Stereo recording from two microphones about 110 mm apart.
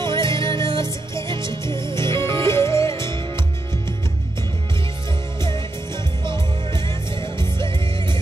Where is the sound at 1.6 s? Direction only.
25° left (ahead or behind).